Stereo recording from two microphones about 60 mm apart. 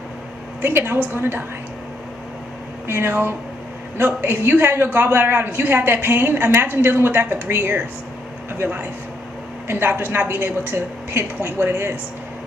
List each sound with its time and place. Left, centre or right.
0.6 s a woman's voice: right
2.9 s a woman's voice: right